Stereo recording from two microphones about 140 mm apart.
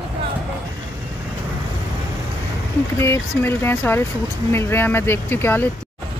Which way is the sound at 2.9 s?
15° left (ahead or behind).